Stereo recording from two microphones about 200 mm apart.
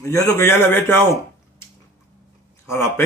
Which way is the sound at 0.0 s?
15° left (ahead or behind).